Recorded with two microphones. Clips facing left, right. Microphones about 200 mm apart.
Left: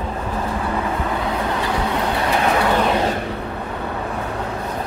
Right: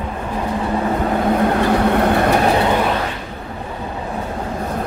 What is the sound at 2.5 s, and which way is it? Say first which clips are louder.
Vehicle: right 3 dB; 25° right (ahead or behind).